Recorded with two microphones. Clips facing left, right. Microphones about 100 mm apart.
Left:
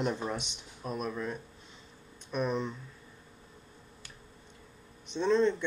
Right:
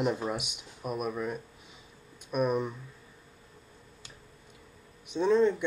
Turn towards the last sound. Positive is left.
turn(degrees=-10)  # may be behind; listen again after turning